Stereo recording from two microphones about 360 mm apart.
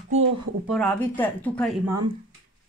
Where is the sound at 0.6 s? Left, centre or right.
Centre.